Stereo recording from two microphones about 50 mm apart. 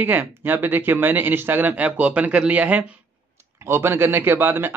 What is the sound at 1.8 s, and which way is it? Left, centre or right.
Speech, right.